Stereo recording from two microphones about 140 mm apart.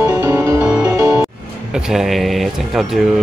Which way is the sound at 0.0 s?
15° right (ahead or behind).